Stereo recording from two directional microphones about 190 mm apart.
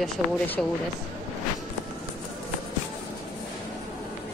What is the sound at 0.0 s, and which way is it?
Speech, 5° left (ahead or behind).